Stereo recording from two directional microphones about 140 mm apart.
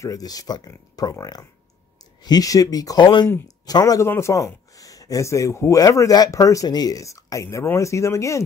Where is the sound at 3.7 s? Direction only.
25° left (ahead or behind).